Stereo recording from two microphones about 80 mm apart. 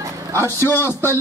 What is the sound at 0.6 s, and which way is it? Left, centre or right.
Speech, left.